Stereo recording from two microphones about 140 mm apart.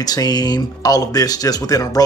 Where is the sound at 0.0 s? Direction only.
30° left (ahead or behind).